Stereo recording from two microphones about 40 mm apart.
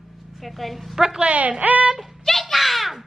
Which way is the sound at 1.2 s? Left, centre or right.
Right.